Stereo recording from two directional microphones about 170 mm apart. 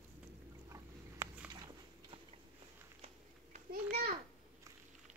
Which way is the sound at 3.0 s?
50° right (ahead or behind).